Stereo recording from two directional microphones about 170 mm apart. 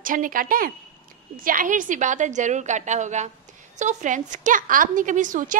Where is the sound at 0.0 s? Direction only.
55° right (ahead or behind).